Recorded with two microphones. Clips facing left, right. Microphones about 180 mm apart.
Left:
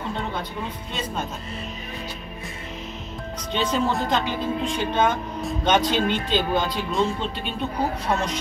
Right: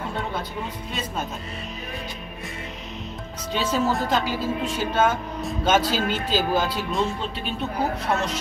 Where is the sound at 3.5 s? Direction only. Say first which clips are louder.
Even; 5° right (ahead or behind).